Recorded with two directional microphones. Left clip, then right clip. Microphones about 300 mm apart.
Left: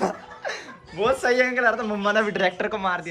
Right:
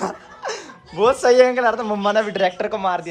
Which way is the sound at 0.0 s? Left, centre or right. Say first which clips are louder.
Even; centre.